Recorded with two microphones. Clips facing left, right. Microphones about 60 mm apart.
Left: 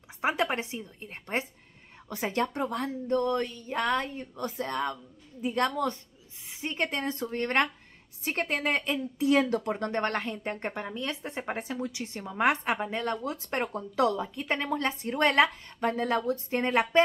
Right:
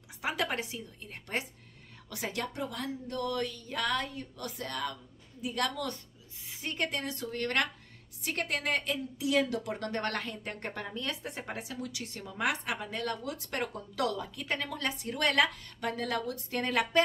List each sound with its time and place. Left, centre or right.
0.2 s a woman's voice: left